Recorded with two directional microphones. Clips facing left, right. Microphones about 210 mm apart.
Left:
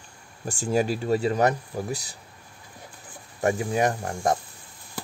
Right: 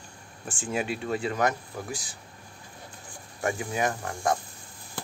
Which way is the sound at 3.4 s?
35° left (ahead or behind).